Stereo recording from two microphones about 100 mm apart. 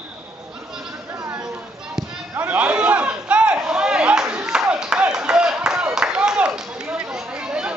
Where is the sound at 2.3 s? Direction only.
15° right (ahead or behind).